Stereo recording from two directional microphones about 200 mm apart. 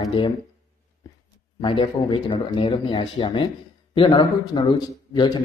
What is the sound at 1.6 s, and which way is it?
A man's voice, 25° left (ahead or behind).